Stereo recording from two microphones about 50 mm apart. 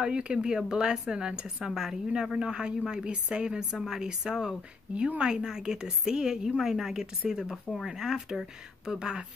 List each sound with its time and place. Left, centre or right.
0.0 s a woman's voice: centre
3.7 s a woman's voice: centre